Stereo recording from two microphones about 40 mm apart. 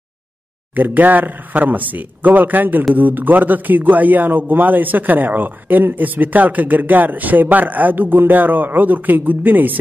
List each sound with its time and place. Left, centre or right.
0.7 s a man's voice: right